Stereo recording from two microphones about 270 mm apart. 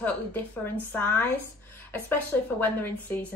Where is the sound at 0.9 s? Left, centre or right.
Centre.